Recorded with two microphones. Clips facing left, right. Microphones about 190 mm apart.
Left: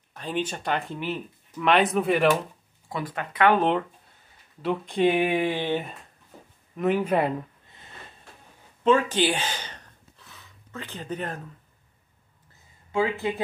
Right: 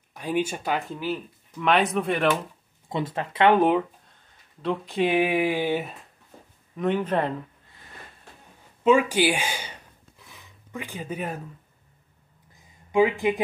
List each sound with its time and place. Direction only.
0.1 s speech: 10° right (ahead or behind)
2.9 s speech: 25° right (ahead or behind)
3.5 s speech: 10° right (ahead or behind)
6.8 s speech: 5° left (ahead or behind)
8.8 s gasp: 10° right (ahead or behind)
12.9 s speech: 15° right (ahead or behind)